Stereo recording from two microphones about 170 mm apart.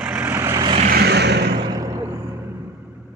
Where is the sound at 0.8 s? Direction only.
70° right (ahead or behind).